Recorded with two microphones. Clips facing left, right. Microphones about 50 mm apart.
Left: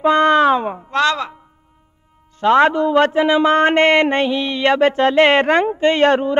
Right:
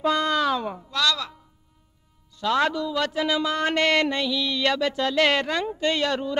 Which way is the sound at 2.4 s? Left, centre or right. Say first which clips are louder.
Left 10 dB; left.